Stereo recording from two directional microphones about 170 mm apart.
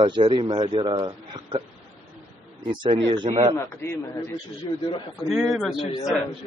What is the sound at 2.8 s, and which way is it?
Speech, 30° right (ahead or behind).